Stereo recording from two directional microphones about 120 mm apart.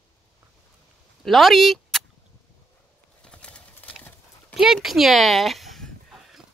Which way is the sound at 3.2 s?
10° left (ahead or behind).